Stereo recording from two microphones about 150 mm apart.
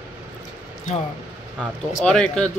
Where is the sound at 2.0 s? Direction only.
5° left (ahead or behind).